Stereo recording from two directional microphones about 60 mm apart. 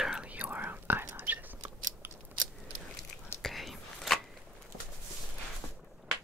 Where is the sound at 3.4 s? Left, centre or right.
Centre.